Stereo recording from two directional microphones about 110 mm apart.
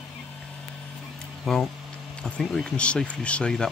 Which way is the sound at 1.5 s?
Centre (ahead or behind).